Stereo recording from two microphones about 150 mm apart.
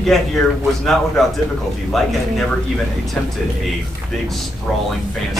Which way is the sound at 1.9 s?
Centre (ahead or behind).